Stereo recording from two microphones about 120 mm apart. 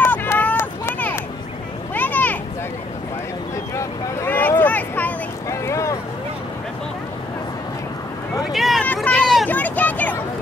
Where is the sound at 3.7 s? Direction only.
20° left (ahead or behind).